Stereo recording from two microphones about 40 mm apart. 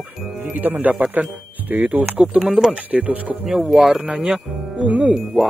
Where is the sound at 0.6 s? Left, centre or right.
Right.